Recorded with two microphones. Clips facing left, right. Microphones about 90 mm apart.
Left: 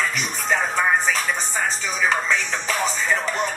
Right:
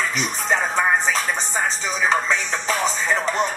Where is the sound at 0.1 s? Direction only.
30° right (ahead or behind).